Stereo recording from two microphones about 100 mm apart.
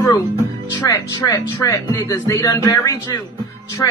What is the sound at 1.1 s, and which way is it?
Speech, 35° left (ahead or behind).